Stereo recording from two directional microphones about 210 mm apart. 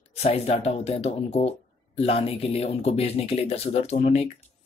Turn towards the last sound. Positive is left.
turn(degrees=30)  # may be behind; listen again after turning